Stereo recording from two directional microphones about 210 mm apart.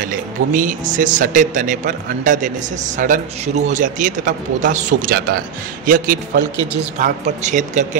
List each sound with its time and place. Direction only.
0.0 s a man's voice: 40° right (ahead or behind)